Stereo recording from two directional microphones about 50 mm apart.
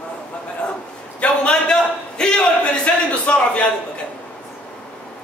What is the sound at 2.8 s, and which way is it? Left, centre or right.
Speech, left.